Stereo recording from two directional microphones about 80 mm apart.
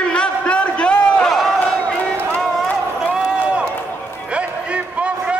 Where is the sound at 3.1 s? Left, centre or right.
Centre.